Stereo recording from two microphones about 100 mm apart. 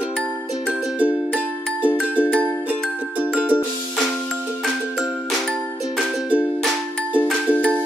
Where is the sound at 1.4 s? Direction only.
15° right (ahead or behind).